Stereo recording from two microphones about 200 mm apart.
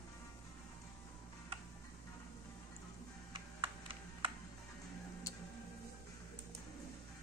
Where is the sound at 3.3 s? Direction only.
25° right (ahead or behind).